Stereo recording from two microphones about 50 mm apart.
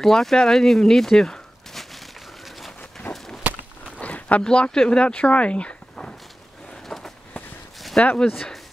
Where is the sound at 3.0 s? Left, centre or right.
Left.